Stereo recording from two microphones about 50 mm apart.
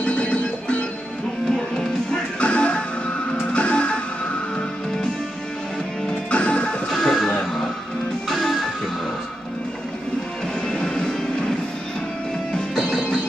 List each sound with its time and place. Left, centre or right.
0.0 s music: left
2.4 s music: left
6.0 s music: left
6.9 s music: centre
8.3 s music: centre
10.7 s vehicle: centre